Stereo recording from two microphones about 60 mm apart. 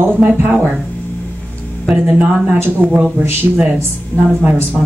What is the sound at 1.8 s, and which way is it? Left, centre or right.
A woman's voice, right.